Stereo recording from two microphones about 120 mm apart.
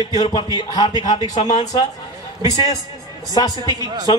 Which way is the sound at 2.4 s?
35° left (ahead or behind).